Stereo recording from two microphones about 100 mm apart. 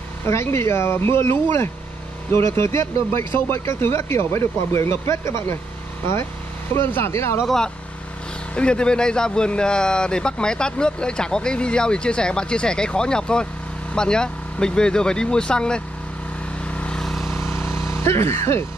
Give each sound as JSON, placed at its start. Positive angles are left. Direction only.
{"t": 0.3, "sound": "speech", "side_deg": 25}
{"t": 2.3, "sound": "speech", "side_deg": 25}
{"t": 6.7, "sound": "speech", "side_deg": 25}
{"t": 7.4, "sound": "speech", "side_deg": 5}
{"t": 16.6, "sound": "vehicle", "side_deg": 10}
{"t": 17.3, "sound": "vehicle", "side_deg": 25}